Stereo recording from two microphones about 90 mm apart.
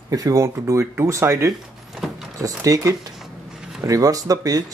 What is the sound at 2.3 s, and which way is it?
Speech, 40° right (ahead or behind).